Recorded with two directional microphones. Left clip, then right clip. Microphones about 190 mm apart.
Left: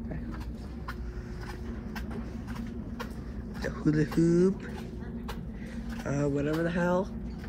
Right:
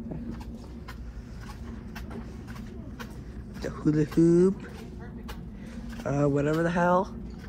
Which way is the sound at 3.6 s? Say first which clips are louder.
Right 2 dB; 5° right (ahead or behind).